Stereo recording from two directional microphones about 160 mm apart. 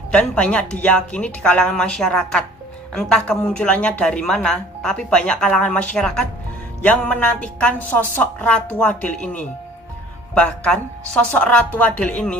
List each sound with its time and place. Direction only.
0.1 s a woman's voice: 5° left (ahead or behind)